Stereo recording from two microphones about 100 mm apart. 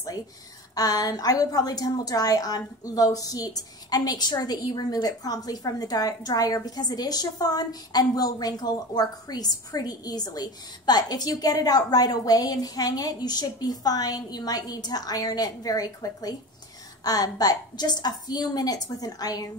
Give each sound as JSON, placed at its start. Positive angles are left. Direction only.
{"t": 0.7, "sound": "a woman's voice", "side_deg": 40}